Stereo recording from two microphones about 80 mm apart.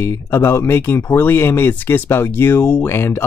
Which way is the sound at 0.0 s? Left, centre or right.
Left.